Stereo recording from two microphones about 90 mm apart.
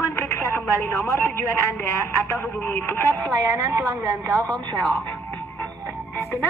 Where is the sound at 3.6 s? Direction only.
35° right (ahead or behind).